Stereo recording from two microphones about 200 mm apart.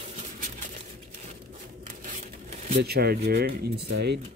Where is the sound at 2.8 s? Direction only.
50° right (ahead or behind).